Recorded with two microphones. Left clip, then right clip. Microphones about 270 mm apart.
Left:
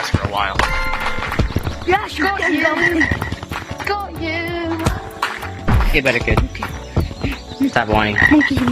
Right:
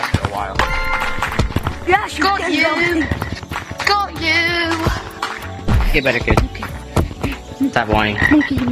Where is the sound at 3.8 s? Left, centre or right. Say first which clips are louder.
Right 6 dB; right.